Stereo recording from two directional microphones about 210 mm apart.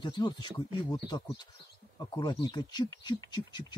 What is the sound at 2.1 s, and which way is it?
Speech, 20° left (ahead or behind).